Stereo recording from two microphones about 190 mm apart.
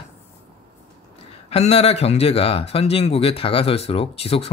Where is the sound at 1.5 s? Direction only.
35° left (ahead or behind).